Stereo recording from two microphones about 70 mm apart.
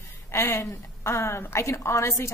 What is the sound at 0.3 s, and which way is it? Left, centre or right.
A woman's voice, left.